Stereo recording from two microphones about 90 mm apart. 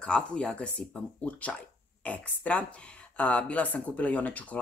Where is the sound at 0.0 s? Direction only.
10° left (ahead or behind).